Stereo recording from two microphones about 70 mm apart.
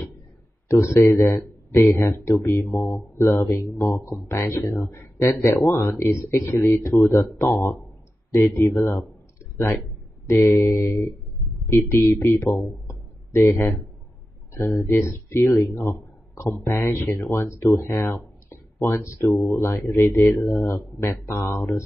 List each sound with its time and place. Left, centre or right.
0.7 s speech: left
10.2 s speech: left
12.8 s a sound: left
14.5 s speech: left
17.6 s a sound: left
18.9 s speech: left